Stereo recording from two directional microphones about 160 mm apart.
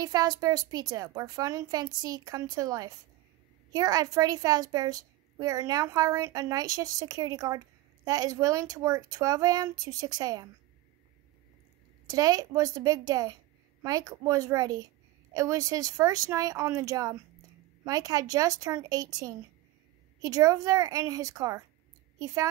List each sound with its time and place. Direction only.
0.0 s a woman's voice: 25° right (ahead or behind)
12.1 s a woman's voice: 20° right (ahead or behind)